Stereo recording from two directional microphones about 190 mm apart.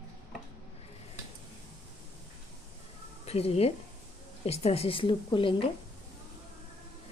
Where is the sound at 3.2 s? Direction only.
30° left (ahead or behind).